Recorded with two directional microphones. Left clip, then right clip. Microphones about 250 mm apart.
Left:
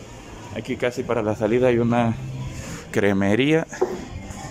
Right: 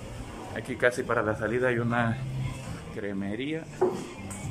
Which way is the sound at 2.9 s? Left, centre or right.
Left.